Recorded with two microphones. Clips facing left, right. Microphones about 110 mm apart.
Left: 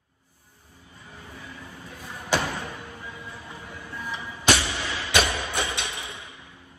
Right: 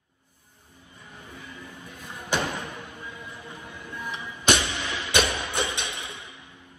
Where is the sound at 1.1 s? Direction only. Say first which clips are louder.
Left 1 dB; 20° right (ahead or behind).